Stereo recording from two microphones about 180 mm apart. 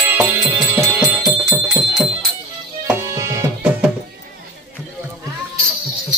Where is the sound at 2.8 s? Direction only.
15° right (ahead or behind).